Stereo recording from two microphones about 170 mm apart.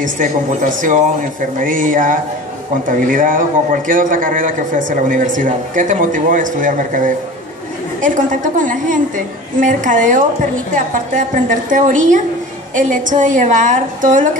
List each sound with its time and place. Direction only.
0.0 s a man's voice: 50° right (ahead or behind)